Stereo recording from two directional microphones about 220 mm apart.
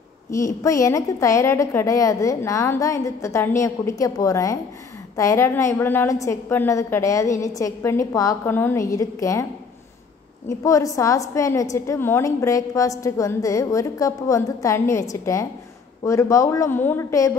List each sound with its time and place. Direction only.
0.3 s a woman's voice: 15° left (ahead or behind)
10.6 s a woman's voice: 15° left (ahead or behind)